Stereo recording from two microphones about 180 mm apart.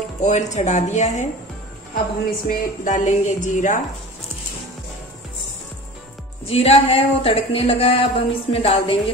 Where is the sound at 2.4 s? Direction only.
45° left (ahead or behind).